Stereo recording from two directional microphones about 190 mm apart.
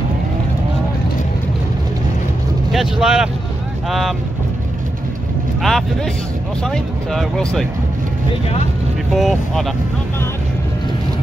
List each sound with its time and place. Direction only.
2.7 s speech: centre (ahead or behind)
5.6 s speech: centre (ahead or behind)
8.3 s speech: 30° left (ahead or behind)
9.1 s speech: centre (ahead or behind)